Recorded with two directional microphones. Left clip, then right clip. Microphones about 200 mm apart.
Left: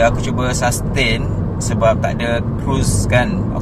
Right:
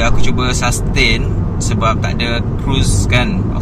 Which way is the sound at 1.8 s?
5° left (ahead or behind).